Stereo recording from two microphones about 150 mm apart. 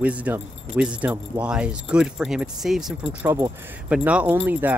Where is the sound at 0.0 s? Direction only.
10° right (ahead or behind).